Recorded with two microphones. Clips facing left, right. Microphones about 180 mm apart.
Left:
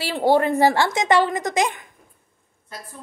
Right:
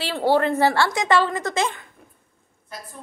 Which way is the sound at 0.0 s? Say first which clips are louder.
Left 1 dB; 15° left (ahead or behind).